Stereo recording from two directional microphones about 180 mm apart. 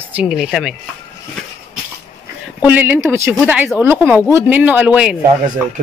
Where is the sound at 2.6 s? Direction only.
10° right (ahead or behind).